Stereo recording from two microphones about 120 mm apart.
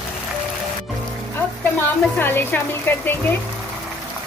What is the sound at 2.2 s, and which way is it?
Speech, 15° left (ahead or behind).